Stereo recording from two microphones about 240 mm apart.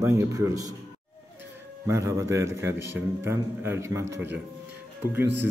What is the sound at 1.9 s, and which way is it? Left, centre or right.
A man's voice, centre.